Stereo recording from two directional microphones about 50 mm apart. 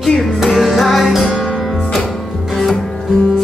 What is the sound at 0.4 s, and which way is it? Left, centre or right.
Music, centre.